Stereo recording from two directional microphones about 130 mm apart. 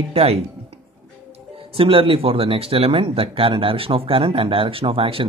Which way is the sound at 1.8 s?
45° right (ahead or behind).